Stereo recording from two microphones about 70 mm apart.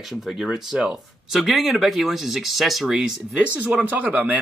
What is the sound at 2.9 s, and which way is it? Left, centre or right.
Speech, centre.